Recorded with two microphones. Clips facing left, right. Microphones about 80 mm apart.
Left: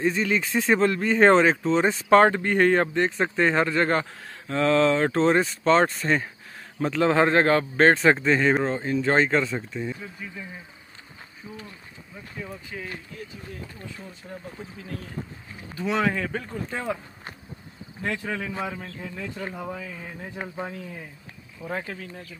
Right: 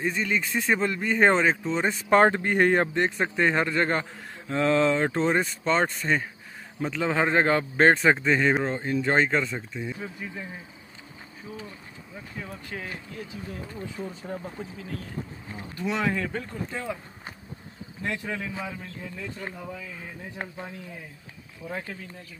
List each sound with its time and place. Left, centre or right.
0.0 s speech: centre
2.0 s speech: centre
3.1 s speech: centre
4.5 s speech: centre
10.2 s speech: right
15.9 s speech: left
16.2 s speech: centre
18.0 s speech: centre
18.6 s speech: centre
21.6 s speech: left